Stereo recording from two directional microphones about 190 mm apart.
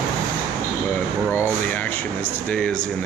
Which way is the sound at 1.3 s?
10° left (ahead or behind).